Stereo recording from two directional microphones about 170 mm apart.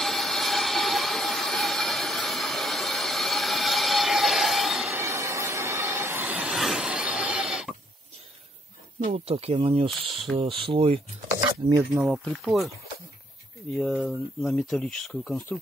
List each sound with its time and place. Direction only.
0.0 s train: centre (ahead or behind)
4.9 s train: 15° right (ahead or behind)
9.0 s speech: 40° right (ahead or behind)
12.0 s speech: 5° right (ahead or behind)
13.7 s speech: 5° left (ahead or behind)